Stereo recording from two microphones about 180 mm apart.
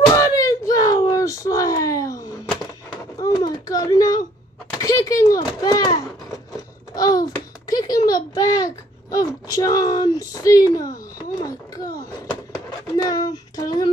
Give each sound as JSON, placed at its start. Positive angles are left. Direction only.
{"t": 0.1, "sound": "whimper", "side_deg": 15}
{"t": 2.9, "sound": "a sound", "side_deg": 20}
{"t": 12.9, "sound": "child singing", "side_deg": 20}